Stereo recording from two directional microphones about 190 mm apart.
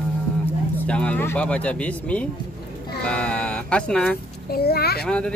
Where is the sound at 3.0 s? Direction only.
5° left (ahead or behind).